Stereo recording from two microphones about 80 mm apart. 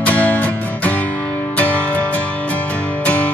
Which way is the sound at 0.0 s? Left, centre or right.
Centre.